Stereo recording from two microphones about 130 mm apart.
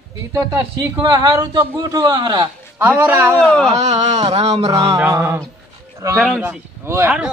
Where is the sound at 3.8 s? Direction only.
60° right (ahead or behind).